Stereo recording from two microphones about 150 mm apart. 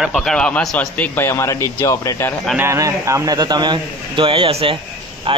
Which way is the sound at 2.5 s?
20° right (ahead or behind).